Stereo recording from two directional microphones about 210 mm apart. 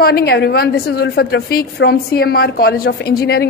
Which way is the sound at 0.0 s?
50° left (ahead or behind).